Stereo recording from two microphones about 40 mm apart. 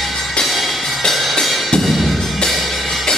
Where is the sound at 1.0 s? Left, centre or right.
Centre.